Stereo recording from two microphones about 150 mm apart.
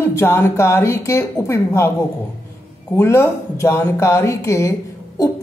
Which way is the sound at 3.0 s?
20° left (ahead or behind).